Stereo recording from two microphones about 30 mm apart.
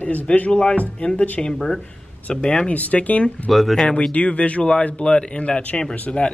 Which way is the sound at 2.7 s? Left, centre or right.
Left.